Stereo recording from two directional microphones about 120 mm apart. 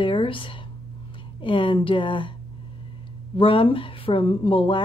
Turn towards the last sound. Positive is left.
turn(degrees=50)  # may be behind; listen again after turning